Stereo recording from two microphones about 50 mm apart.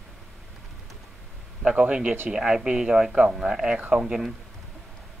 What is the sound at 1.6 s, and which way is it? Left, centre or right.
A man's voice, centre.